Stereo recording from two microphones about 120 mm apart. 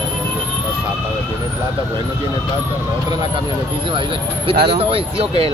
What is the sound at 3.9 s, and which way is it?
Speech, 45° right (ahead or behind).